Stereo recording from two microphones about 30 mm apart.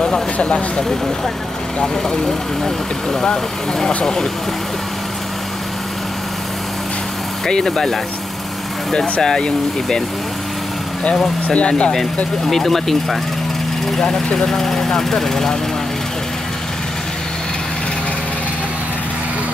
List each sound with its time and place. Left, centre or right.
0.0 s speech: left
2.6 s speech: centre
7.4 s speech: left
9.2 s speech: left
11.4 s speech: left
12.4 s speech: centre
14.1 s speech: centre